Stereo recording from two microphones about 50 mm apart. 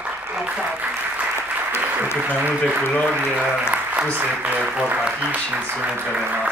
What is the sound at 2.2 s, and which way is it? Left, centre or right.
Speech, right.